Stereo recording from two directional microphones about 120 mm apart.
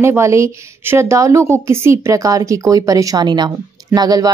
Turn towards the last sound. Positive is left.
turn(degrees=-35)  # may be behind; listen again after turning